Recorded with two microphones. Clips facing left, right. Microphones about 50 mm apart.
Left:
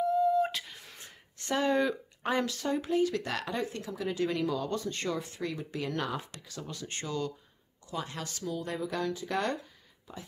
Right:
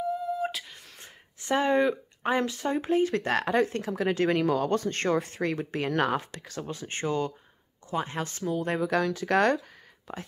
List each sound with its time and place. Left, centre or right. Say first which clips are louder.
0.0 s a sound: left 4 dB; centre
1.4 s speech: right 4 dB; right
6.6 s speech: right 7 dB; right
8.7 s speech: right 7 dB; right
10.1 s speech: right 6 dB; right